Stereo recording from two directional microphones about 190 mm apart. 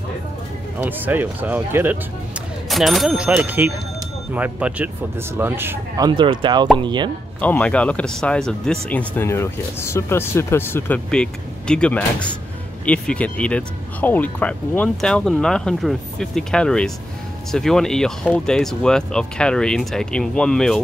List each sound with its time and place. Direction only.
0.7 s speech: 10° right (ahead or behind)
6.0 s speech: 25° right (ahead or behind)
7.3 s speech: 10° left (ahead or behind)